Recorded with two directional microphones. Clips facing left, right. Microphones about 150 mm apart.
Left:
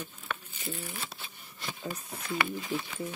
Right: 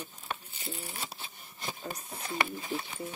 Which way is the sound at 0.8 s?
35° right (ahead or behind).